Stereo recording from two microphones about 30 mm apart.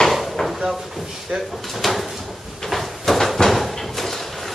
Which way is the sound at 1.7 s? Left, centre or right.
Centre.